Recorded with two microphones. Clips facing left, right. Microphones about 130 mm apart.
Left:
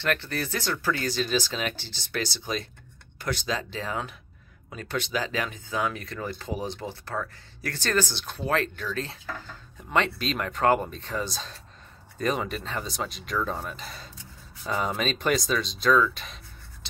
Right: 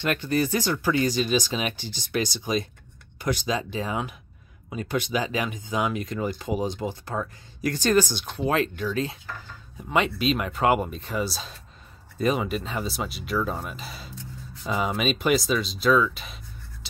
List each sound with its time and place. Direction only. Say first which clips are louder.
0.0 s speech: right 4 dB; 15° right (ahead or behind)